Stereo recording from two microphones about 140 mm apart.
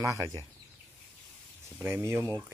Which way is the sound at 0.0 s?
25° right (ahead or behind).